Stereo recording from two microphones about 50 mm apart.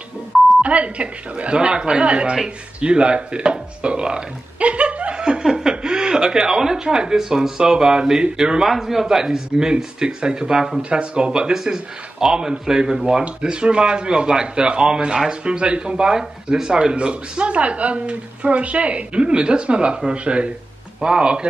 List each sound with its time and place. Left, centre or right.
0.6 s speech: right
8.6 s speech: centre
10.8 s speech: centre